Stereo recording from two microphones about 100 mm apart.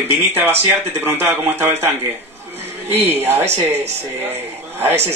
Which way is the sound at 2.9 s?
20° right (ahead or behind).